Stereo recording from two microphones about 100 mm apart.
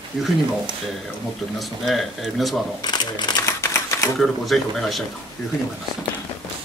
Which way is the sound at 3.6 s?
30° left (ahead or behind).